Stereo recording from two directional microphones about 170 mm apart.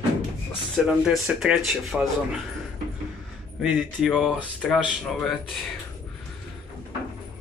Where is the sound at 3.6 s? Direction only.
Centre (ahead or behind).